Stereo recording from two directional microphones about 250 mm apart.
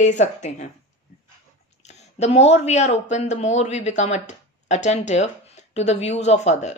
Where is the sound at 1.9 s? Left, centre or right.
Left.